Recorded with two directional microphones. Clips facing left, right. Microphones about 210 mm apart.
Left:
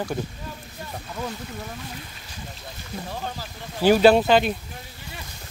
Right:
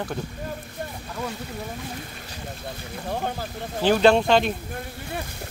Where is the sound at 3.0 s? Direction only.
55° right (ahead or behind).